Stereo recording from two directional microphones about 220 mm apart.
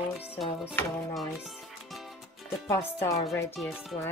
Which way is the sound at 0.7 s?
Centre (ahead or behind).